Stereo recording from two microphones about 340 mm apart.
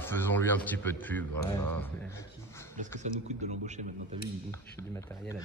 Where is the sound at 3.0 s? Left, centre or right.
Centre.